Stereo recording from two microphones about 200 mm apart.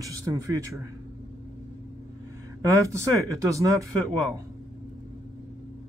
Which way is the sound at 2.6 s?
15° right (ahead or behind).